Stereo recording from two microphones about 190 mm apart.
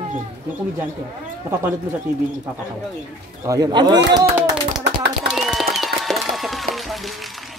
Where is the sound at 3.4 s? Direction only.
20° right (ahead or behind).